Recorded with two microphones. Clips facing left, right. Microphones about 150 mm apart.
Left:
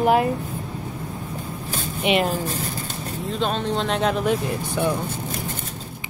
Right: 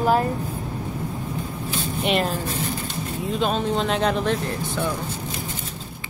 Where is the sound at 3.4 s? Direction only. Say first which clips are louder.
Right 1 dB; 5° right (ahead or behind).